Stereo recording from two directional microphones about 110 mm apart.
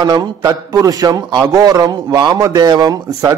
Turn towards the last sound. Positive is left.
turn(degrees=-35)  # may be behind; listen again after turning